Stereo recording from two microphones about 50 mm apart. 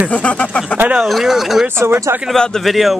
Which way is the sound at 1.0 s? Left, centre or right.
Centre.